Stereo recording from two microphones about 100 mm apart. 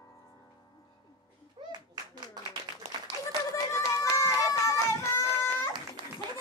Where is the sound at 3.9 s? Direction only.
30° left (ahead or behind).